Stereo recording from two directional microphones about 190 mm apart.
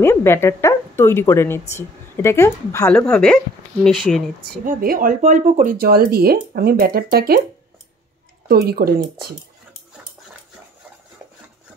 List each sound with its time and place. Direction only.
0.0 s a woman's voice: 10° left (ahead or behind)
3.1 s speech: 5° left (ahead or behind)
4.6 s speech: 50° right (ahead or behind)
8.5 s speech: 55° right (ahead or behind)